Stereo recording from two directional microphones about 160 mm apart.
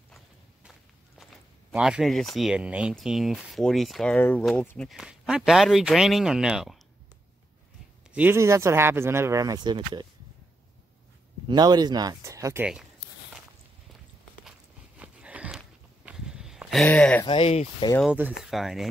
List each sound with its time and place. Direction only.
1.7 s speech: 5° right (ahead or behind)
8.1 s speech: 10° right (ahead or behind); by 10.0 s 30° right (ahead or behind)
11.4 s speech: 25° right (ahead or behind)
15.0 s a sound: 10° right (ahead or behind)
16.8 s speech: 10° left (ahead or behind)
17.3 s speech: 40° left (ahead or behind)
18.1 s speech: 10° right (ahead or behind)